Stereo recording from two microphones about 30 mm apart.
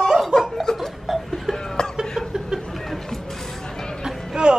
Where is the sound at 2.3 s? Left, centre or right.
Centre.